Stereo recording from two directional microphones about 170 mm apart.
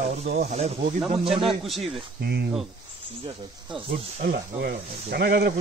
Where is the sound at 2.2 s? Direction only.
80° right.